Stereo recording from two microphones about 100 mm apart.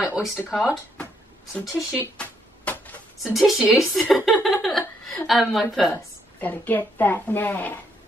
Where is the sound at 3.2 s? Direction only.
Centre (ahead or behind).